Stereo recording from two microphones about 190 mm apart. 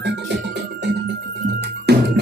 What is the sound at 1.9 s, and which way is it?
Music, 60° right (ahead or behind).